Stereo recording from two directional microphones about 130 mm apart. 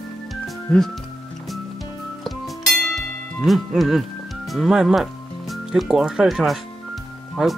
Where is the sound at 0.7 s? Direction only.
5° left (ahead or behind).